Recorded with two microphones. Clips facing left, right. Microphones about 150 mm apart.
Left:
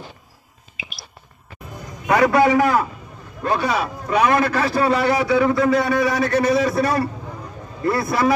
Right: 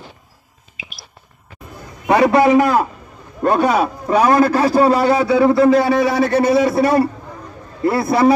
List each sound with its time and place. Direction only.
0.8 s a sound: 65° left (ahead or behind)
2.0 s a man's voice: 25° right (ahead or behind)
3.4 s a man's voice: 50° right (ahead or behind); by 8.4 s 30° right (ahead or behind)